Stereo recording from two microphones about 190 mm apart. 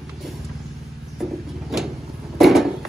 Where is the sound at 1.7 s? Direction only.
Centre (ahead or behind).